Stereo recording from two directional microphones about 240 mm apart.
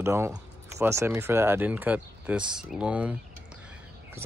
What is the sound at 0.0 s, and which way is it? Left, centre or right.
Speech, centre.